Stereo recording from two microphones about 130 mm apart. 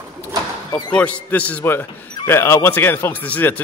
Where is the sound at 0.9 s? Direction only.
10° left (ahead or behind).